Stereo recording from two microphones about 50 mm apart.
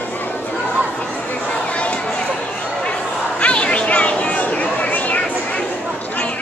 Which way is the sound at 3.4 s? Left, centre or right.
Left.